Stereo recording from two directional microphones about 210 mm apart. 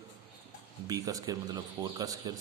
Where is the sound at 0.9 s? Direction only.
15° right (ahead or behind).